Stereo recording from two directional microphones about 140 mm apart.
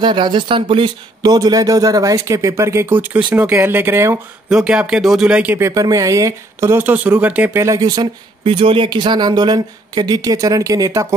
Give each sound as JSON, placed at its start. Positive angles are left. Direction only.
{"t": 0.0, "sound": "speech", "side_deg": -35}
{"t": 4.5, "sound": "speech", "side_deg": -5}
{"t": 5.7, "sound": "speech", "side_deg": -25}
{"t": 8.5, "sound": "speech", "side_deg": -40}